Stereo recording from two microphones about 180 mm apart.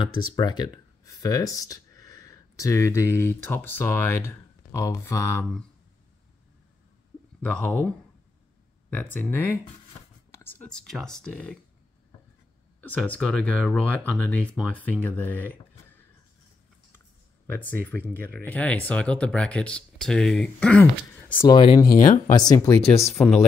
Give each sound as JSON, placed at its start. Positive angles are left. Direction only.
{"t": 0.0, "sound": "speech", "side_deg": 25}
{"t": 7.6, "sound": "speech", "side_deg": 10}
{"t": 8.9, "sound": "speech", "side_deg": 10}
{"t": 12.8, "sound": "speech", "side_deg": 10}
{"t": 17.5, "sound": "speech", "side_deg": 10}
{"t": 21.5, "sound": "speech", "side_deg": 25}
{"t": 21.9, "sound": "speech", "side_deg": 45}
{"t": 22.3, "sound": "speech", "side_deg": 20}
{"t": 23.1, "sound": "speech", "side_deg": 5}